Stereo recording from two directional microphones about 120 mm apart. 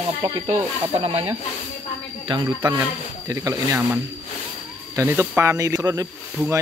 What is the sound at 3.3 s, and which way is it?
Speech, 30° right (ahead or behind).